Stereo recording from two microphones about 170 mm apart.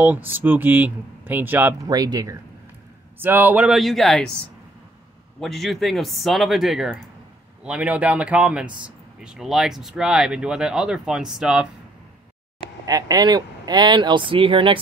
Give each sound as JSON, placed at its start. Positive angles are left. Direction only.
{"t": 0.0, "sound": "speech", "side_deg": -10}
{"t": 1.9, "sound": "speech", "side_deg": -25}
{"t": 3.2, "sound": "speech", "side_deg": -10}
{"t": 5.4, "sound": "speech", "side_deg": 0}
{"t": 12.8, "sound": "speech", "side_deg": -20}